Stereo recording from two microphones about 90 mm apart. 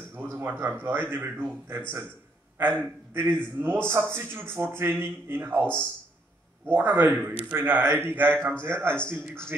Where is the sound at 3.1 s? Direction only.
25° right (ahead or behind).